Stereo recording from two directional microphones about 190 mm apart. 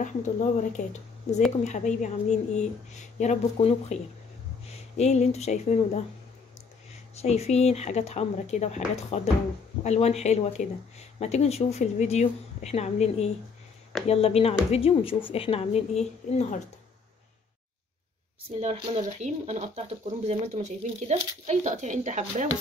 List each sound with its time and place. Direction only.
0.0 s speech: 40° left (ahead or behind)
7.2 s speech: 35° left (ahead or behind)
18.6 s speech: 30° right (ahead or behind)